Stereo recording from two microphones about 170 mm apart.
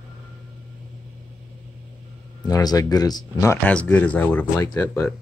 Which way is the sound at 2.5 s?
20° left (ahead or behind).